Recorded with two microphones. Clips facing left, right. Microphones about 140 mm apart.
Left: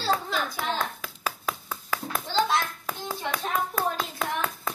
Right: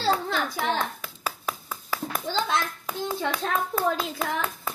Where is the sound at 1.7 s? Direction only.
10° right (ahead or behind).